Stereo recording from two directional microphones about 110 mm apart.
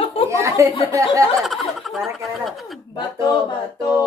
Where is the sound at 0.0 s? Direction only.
55° left (ahead or behind).